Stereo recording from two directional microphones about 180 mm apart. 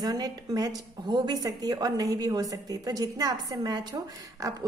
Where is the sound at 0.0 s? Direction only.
20° right (ahead or behind).